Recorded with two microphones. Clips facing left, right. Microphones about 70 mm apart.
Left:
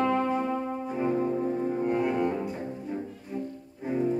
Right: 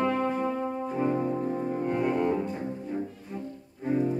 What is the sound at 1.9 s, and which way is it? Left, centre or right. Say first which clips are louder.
Cello: right 1 dB; centre.